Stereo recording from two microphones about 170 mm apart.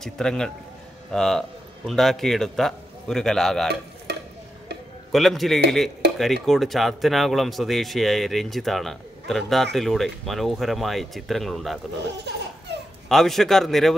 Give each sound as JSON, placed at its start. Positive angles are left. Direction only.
{"t": 0.0, "sound": "speech", "side_deg": 5}
{"t": 4.1, "sound": "stir", "side_deg": -75}
{"t": 5.1, "sound": "speech", "side_deg": 0}
{"t": 13.1, "sound": "speech", "side_deg": 0}